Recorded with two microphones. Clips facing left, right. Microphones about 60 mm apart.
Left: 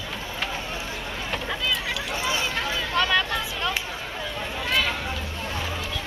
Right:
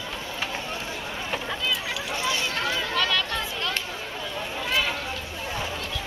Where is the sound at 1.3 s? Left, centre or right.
Centre.